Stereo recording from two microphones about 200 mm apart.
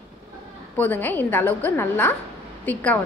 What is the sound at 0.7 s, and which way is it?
A woman's voice, 10° left (ahead or behind).